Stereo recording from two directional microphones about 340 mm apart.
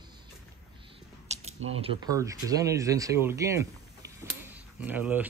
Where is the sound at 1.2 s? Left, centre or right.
Centre.